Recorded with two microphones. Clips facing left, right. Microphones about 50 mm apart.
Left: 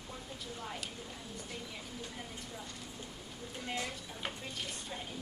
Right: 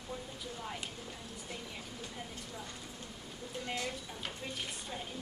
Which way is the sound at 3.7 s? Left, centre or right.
Centre.